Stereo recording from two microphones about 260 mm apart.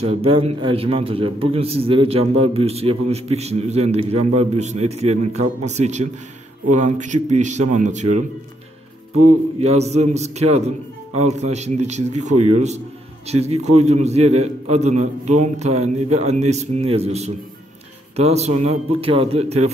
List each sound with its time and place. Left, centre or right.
0.0 s a man's voice: right
9.6 s a man's voice: right